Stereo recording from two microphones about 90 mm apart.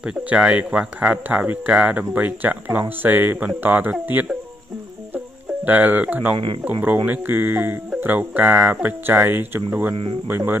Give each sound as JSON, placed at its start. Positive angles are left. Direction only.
{"t": 0.0, "sound": "speech", "side_deg": -10}
{"t": 5.7, "sound": "speech", "side_deg": -20}
{"t": 6.3, "sound": "speech", "side_deg": -65}
{"t": 6.6, "sound": "speech", "side_deg": -20}